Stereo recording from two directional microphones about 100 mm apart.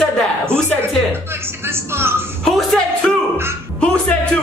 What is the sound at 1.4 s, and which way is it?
Speech, 25° right (ahead or behind).